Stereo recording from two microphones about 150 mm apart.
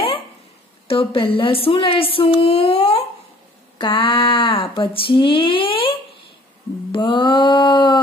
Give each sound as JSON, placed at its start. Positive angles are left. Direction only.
{"t": 0.8, "sound": "speech", "side_deg": 35}